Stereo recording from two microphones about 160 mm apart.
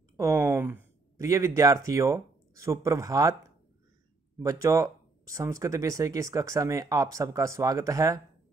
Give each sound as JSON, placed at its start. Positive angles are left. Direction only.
{"t": 0.2, "sound": "speech", "side_deg": -15}